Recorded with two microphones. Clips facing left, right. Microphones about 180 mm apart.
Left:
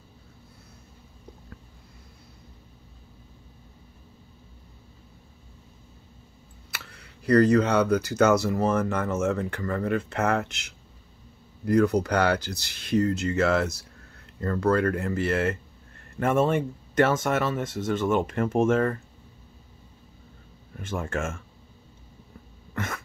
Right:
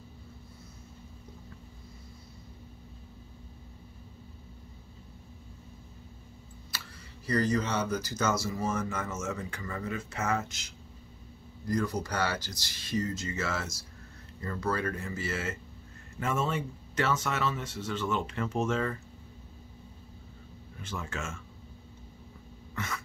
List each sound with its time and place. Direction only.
7.2 s speech: 65° left (ahead or behind)
20.8 s speech: 50° left (ahead or behind)
22.8 s cough: 55° left (ahead or behind)